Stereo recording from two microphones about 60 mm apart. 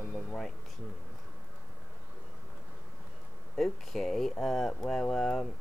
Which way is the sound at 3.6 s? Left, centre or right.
Centre.